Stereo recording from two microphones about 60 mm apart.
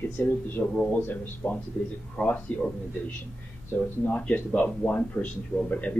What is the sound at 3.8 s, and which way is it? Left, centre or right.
Speech, left.